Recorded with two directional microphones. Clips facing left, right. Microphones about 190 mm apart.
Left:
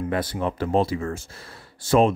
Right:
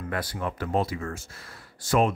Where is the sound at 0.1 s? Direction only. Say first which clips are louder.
Left 2 dB; 25° left (ahead or behind).